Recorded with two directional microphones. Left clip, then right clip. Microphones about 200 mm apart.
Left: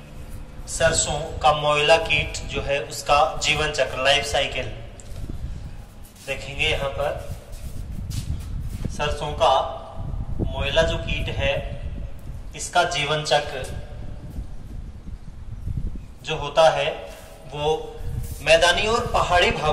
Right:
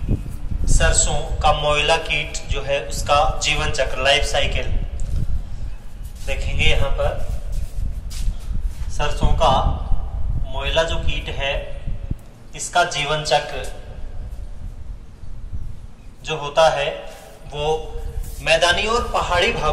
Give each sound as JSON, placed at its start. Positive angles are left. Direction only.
{"t": 0.7, "sound": "a man's voice", "side_deg": 15}
{"t": 6.2, "sound": "a man's voice", "side_deg": 15}
{"t": 8.9, "sound": "a man's voice", "side_deg": 10}
{"t": 12.5, "sound": "a man's voice", "side_deg": 10}
{"t": 16.3, "sound": "a man's voice", "side_deg": 10}